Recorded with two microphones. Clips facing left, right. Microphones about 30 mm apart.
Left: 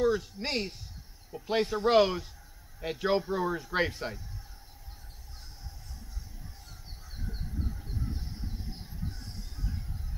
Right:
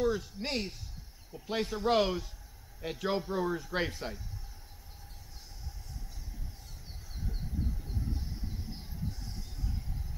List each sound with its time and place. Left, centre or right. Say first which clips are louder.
0.0 s speech: left 3 dB; centre